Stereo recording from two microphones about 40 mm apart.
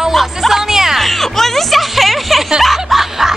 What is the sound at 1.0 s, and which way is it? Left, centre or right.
Speech, centre.